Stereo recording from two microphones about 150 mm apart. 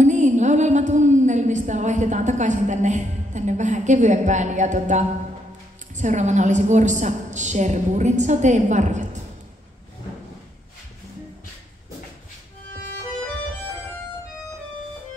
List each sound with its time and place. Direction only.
0.0 s a woman's voice: 55° right (ahead or behind)